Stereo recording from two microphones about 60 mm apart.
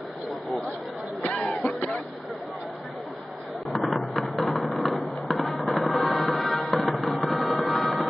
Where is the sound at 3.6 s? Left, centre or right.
Centre.